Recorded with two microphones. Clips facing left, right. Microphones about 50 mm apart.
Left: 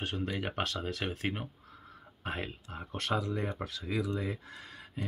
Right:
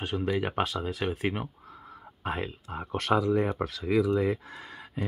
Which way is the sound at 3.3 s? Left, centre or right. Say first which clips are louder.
Right 9 dB; right.